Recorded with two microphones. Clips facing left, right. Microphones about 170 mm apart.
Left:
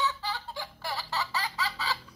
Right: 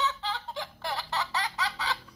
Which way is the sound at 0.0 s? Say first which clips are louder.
Even; 20° right (ahead or behind).